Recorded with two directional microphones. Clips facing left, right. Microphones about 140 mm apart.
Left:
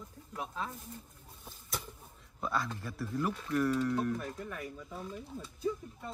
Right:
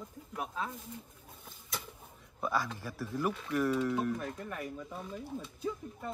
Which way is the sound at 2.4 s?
5° right (ahead or behind).